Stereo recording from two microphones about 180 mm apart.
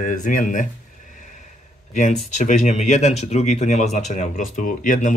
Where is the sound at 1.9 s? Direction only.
45° left (ahead or behind).